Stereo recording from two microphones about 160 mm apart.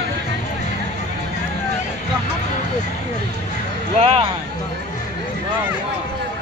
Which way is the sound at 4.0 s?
40° right (ahead or behind).